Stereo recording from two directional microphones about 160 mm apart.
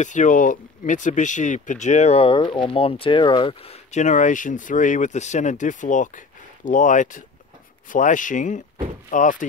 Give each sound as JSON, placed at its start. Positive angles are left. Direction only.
{"t": 0.0, "sound": "speech", "side_deg": 50}
{"t": 3.9, "sound": "speech", "side_deg": 50}